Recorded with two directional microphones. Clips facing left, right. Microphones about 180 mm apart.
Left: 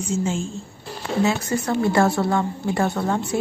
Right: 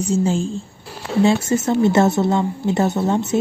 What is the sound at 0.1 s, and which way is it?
Speech, 35° right (ahead or behind).